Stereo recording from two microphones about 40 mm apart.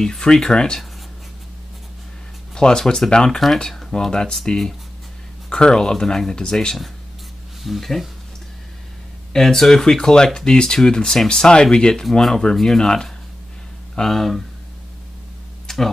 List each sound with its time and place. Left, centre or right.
0.2 s speech: centre
2.5 s speech: centre
3.3 s speech: centre
5.5 s speech: centre
7.6 s speech: centre
9.3 s speech: centre
15.6 s a sound: centre